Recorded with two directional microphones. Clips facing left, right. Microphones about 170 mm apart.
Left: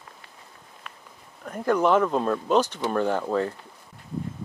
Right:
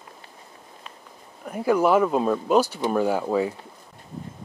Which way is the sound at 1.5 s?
10° right (ahead or behind).